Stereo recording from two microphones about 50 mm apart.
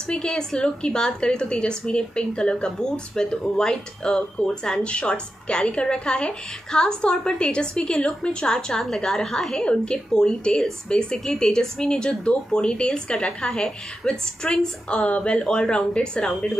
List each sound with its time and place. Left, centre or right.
0.0 s a woman's voice: centre